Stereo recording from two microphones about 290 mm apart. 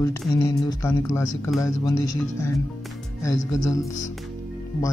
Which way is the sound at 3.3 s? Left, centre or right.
Left.